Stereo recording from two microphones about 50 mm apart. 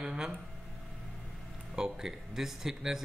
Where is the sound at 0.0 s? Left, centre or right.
Centre.